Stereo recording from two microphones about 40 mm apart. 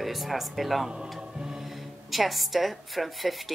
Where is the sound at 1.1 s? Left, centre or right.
Centre.